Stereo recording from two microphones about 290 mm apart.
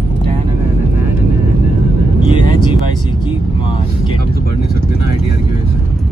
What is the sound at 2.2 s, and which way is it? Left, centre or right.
Vehicle, centre.